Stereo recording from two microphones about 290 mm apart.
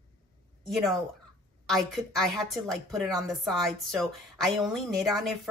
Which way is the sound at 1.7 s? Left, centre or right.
Centre.